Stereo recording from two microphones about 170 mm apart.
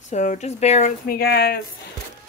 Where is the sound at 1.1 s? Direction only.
65° left (ahead or behind).